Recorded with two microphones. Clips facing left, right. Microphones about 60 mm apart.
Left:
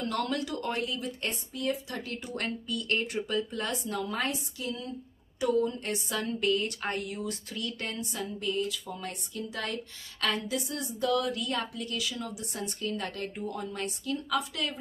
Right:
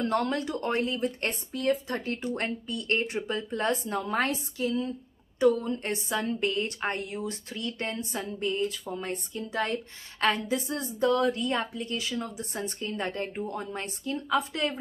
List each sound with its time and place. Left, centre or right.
0.0 s a woman's voice: right
4.0 s a woman's voice: right
4.3 s a woman's voice: right